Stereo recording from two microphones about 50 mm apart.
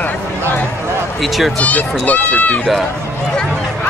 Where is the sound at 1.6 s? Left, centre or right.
Left.